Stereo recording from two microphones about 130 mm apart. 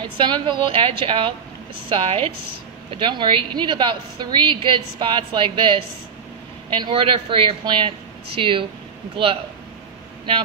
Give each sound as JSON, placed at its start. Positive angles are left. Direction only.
{"t": 0.0, "sound": "a woman's voice", "side_deg": -35}